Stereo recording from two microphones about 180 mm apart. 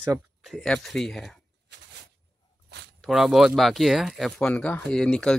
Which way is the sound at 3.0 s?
Centre (ahead or behind).